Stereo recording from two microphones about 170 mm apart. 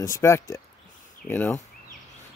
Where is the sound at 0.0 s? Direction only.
15° left (ahead or behind).